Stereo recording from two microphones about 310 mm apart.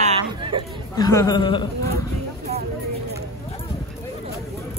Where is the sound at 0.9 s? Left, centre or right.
Centre.